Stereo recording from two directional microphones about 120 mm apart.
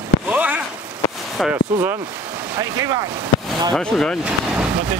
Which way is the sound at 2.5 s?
30° right (ahead or behind).